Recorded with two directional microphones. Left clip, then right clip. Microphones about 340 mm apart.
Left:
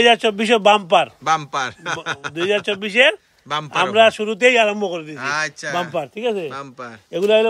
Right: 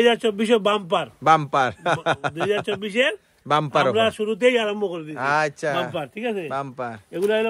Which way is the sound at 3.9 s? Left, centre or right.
Left.